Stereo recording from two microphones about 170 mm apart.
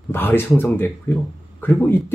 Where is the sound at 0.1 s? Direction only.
15° left (ahead or behind).